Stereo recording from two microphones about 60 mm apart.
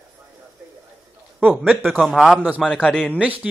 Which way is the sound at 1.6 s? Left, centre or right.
Right.